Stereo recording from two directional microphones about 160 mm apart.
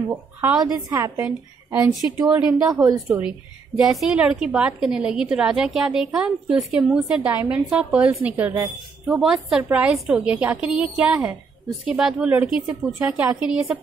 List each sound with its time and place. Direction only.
0.4 s a woman's voice: 10° right (ahead or behind)
2.6 s speech: 20° right (ahead or behind)
3.1 s a woman's voice: 5° right (ahead or behind)